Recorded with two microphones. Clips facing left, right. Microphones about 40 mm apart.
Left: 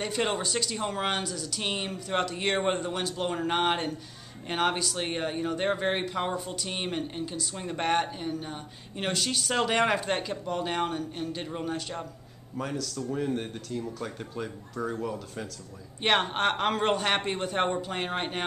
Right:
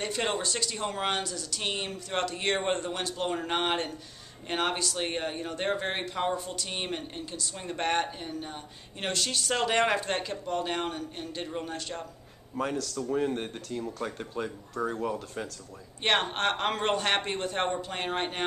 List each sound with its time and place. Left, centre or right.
0.0 s speech: centre
13.1 s speech: centre
16.0 s speech: centre